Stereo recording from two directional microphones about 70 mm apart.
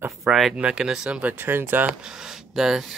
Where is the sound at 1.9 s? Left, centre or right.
Centre.